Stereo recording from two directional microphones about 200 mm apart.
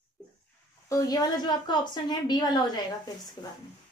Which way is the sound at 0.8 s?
15° left (ahead or behind).